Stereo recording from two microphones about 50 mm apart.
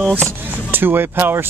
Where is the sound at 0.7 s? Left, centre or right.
Right.